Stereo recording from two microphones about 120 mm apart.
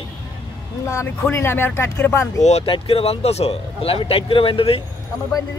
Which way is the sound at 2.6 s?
50° left (ahead or behind).